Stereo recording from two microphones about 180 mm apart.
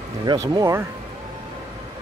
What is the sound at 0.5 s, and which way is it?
Speech, 20° right (ahead or behind).